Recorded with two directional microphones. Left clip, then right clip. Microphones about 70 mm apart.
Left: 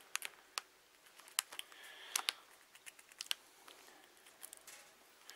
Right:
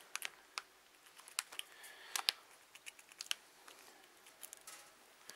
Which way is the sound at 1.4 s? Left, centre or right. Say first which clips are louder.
Left 2 dB; centre.